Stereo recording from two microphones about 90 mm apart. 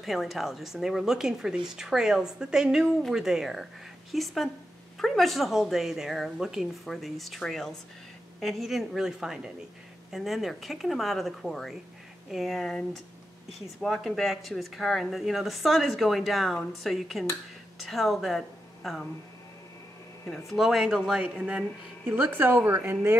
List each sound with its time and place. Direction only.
0.0 s speech: 5° right (ahead or behind)
20.4 s speech: centre (ahead or behind)
22.0 s speech: 20° right (ahead or behind)